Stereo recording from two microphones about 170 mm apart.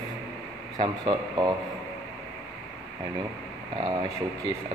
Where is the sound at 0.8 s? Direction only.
25° right (ahead or behind).